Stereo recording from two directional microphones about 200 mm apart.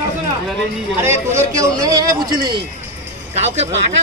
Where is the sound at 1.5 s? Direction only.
15° right (ahead or behind).